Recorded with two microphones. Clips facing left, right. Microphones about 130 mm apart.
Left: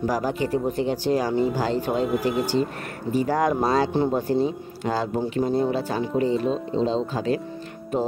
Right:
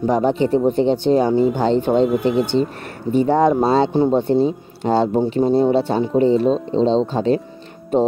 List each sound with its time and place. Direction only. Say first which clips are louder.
0.0 s speech: right 7 dB; 25° right (ahead or behind)